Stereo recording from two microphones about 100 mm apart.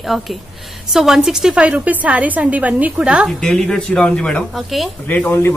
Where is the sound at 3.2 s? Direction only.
5° left (ahead or behind).